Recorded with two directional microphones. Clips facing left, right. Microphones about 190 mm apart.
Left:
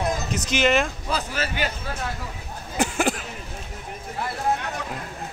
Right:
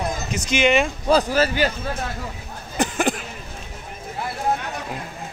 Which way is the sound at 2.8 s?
5° left (ahead or behind).